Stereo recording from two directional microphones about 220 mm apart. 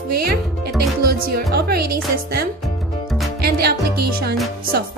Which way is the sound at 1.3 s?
45° right (ahead or behind).